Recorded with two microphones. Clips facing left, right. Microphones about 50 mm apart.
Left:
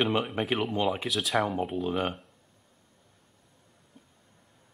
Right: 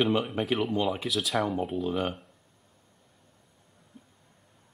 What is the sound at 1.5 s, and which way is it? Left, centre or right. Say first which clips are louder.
Speech: even; centre.